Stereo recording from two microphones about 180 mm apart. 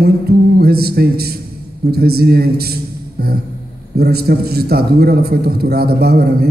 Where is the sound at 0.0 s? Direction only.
60° right (ahead or behind).